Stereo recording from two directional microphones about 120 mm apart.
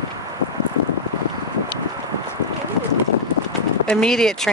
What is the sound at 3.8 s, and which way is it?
Speech, 5° left (ahead or behind).